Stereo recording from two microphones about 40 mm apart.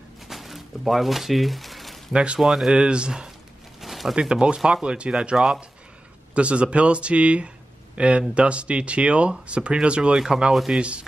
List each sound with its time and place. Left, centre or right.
0.3 s a sound: centre
2.1 s speech: centre
2.4 s speech: centre
2.7 s speech: right
3.8 s a sound: centre
4.1 s speech: centre
10.1 s speech: centre
10.5 s speech: centre
10.8 s speech: right